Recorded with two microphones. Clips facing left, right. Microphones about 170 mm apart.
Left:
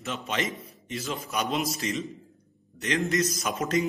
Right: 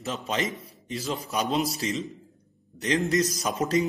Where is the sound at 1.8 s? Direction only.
30° right (ahead or behind).